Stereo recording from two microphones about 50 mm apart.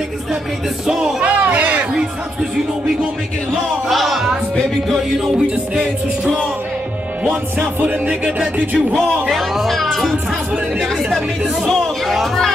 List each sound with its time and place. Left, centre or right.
0.8 s speech: centre
1.2 s speech: right
3.9 s music: centre
7.5 s music: right
9.1 s music: centre